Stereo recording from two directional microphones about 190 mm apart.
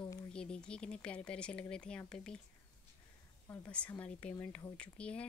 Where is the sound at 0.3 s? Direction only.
5° left (ahead or behind).